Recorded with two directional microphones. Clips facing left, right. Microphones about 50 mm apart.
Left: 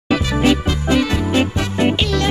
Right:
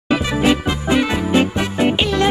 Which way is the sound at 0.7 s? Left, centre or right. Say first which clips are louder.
Even; centre.